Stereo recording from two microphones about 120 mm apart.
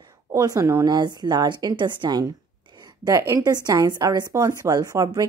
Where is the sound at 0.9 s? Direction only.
35° right (ahead or behind).